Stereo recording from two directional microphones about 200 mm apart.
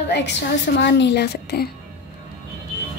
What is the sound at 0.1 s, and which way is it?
A woman's voice, 60° left (ahead or behind).